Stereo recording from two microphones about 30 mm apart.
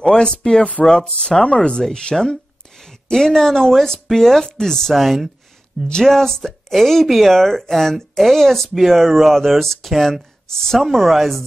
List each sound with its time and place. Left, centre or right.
0.0 s speech: left
2.1 s speech: centre
4.9 s speech: centre
7.3 s speech: centre